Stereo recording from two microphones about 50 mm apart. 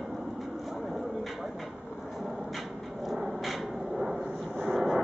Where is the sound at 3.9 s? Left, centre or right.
Centre.